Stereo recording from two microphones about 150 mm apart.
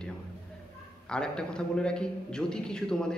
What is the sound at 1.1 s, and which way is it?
A man's voice, 5° left (ahead or behind).